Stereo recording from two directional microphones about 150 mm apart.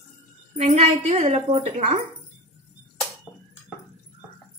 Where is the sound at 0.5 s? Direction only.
45° right (ahead or behind).